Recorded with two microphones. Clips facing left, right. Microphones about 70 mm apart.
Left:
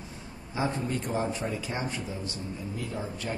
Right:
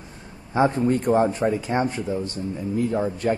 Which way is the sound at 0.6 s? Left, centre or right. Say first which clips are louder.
Right 10 dB; right.